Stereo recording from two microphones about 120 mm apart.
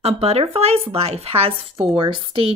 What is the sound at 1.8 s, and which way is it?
Speech, 45° right (ahead or behind).